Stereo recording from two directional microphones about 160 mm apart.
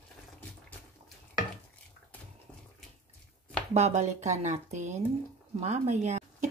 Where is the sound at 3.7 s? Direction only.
45° right (ahead or behind).